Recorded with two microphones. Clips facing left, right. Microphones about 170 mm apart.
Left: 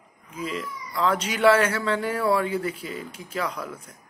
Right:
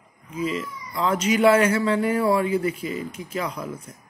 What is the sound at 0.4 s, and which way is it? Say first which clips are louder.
Speech: right 4 dB; centre (ahead or behind).